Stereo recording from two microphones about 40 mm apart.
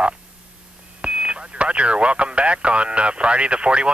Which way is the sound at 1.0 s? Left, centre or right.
Right.